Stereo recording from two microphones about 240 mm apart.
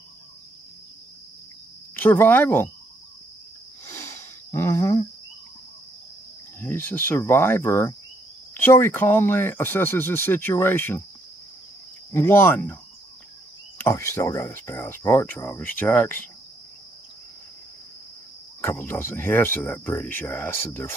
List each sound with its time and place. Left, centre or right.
2.0 s speech: centre
3.8 s a sound: centre
6.6 s speech: centre
12.1 s speech: centre
13.7 s speech: centre
18.6 s speech: centre